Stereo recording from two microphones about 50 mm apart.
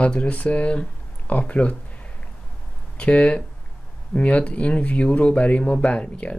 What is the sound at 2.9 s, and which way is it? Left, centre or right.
Speech, left.